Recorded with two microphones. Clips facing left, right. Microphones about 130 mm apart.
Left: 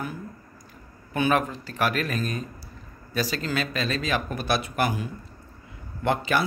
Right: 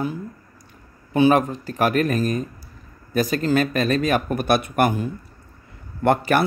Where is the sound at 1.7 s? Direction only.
40° right (ahead or behind).